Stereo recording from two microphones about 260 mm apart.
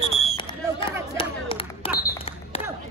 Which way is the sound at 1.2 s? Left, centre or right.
Centre.